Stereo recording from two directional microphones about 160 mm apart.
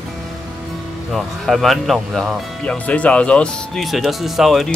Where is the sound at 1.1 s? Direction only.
Centre (ahead or behind).